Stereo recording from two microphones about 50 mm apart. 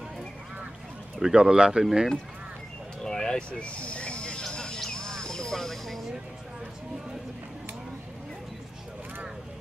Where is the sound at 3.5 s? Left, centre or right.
Left; by 6.1 s centre.